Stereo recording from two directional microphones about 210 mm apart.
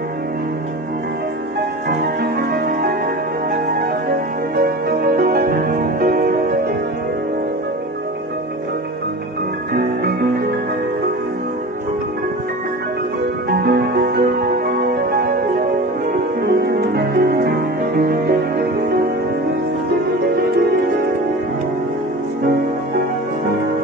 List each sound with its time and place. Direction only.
1.9 s music: 50° right (ahead or behind)
4.6 s music: 45° right (ahead or behind)
9.8 s music: 50° right (ahead or behind)
13.5 s music: 50° right (ahead or behind)